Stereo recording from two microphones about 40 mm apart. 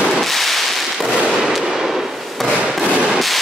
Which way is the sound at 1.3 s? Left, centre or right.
Centre.